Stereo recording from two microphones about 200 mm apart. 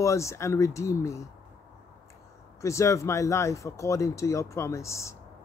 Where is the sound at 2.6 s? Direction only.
15° left (ahead or behind).